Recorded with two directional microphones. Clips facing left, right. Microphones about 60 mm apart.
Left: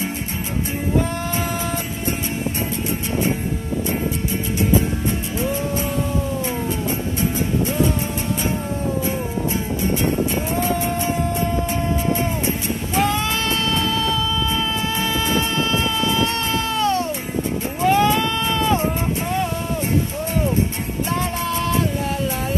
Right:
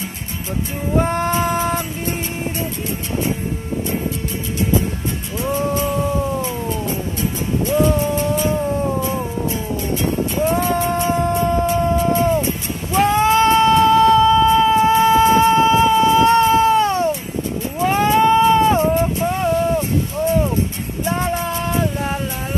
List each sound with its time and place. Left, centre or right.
1.0 s music: right
10.5 s music: right
13.0 s music: right
17.9 s a sound: right